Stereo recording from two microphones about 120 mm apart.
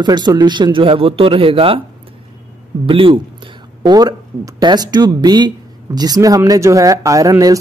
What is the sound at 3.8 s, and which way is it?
Speech, 35° right (ahead or behind).